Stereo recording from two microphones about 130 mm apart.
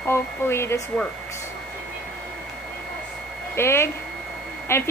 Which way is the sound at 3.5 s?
20° left (ahead or behind).